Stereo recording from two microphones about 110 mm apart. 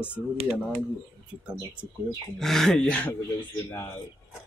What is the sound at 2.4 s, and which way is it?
Speech, 5° left (ahead or behind).